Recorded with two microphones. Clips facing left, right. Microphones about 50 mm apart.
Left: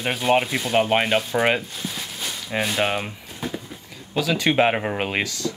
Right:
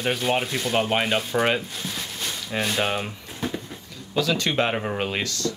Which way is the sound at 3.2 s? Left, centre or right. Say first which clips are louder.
Right 1 dB; centre.